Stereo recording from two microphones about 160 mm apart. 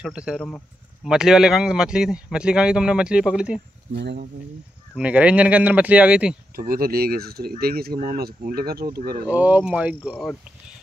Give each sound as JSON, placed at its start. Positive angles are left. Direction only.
{"t": 0.0, "sound": "a man's voice", "side_deg": -5}
{"t": 3.9, "sound": "speech", "side_deg": -90}
{"t": 4.9, "sound": "speech", "side_deg": -5}
{"t": 6.5, "sound": "speech", "side_deg": -65}
{"t": 9.3, "sound": "speech", "side_deg": -10}